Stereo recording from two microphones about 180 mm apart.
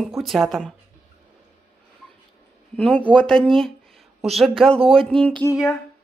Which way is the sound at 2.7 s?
5° left (ahead or behind).